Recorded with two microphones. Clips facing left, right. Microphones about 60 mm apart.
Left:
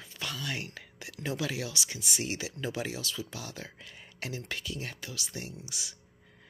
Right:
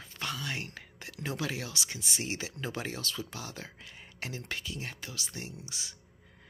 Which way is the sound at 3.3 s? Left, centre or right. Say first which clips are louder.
Even; right.